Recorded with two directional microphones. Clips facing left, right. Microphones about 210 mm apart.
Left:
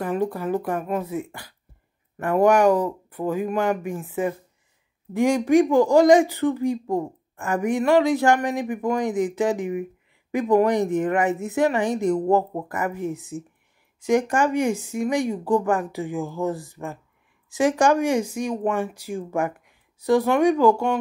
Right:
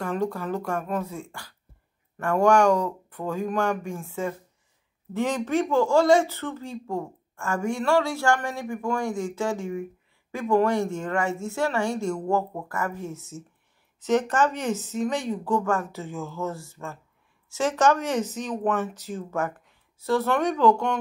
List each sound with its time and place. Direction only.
0.0 s speech: 15° left (ahead or behind)